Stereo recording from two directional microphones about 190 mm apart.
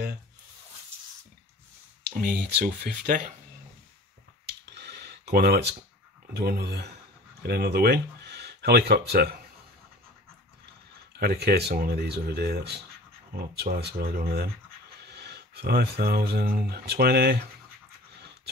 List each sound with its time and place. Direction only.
2.1 s speech: 45° right (ahead or behind)
4.5 s a sound: 60° right (ahead or behind)
6.3 s speech: 55° right (ahead or behind)
11.1 s speech: 55° right (ahead or behind)